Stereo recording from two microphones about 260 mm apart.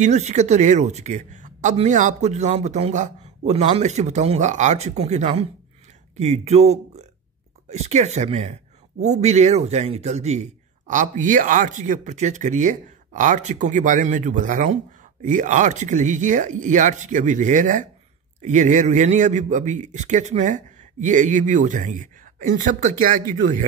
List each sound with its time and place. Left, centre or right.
0.0 s a man's voice: right